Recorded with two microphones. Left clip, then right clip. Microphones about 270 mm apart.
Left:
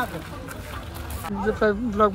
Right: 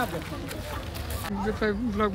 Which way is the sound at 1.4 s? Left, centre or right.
Centre.